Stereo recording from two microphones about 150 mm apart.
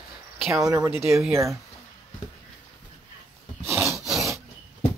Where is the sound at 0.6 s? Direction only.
20° right (ahead or behind).